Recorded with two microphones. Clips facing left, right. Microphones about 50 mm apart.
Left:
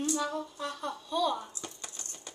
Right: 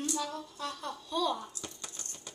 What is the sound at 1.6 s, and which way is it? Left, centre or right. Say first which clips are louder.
Rattle: left 1 dB; centre.